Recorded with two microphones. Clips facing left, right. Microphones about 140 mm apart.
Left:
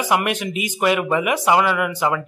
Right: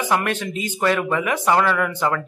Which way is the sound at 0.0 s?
15° left (ahead or behind).